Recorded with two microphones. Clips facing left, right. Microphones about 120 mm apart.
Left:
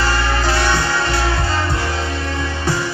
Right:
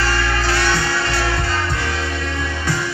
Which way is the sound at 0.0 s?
25° left (ahead or behind).